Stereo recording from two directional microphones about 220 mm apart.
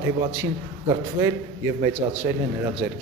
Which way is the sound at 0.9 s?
15° right (ahead or behind).